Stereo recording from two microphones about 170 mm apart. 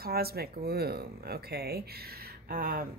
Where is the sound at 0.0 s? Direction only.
65° right (ahead or behind).